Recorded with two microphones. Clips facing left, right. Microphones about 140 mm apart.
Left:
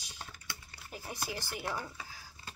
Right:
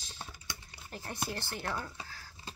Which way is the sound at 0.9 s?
5° left (ahead or behind).